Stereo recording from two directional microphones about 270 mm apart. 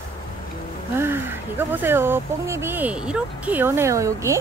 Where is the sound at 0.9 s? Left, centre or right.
Centre.